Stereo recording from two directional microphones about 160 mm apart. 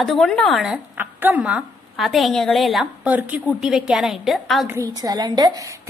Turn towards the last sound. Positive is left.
turn(degrees=-25)  # may be behind; listen again after turning